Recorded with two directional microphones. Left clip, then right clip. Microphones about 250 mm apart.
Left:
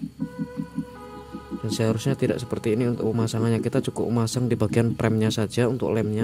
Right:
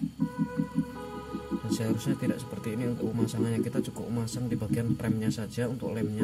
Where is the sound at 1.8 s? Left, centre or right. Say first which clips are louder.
Left 12 dB; left.